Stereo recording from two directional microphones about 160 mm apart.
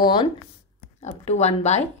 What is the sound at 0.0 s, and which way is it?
Speech, 30° left (ahead or behind).